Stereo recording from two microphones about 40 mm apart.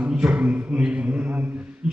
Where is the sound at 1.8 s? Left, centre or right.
Right.